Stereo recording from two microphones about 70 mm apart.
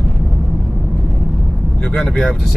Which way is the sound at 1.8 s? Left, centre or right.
Centre.